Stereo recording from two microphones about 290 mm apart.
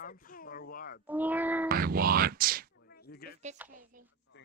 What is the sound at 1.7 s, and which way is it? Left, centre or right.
Speech, right.